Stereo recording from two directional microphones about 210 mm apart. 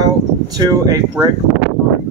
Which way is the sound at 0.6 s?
15° right (ahead or behind).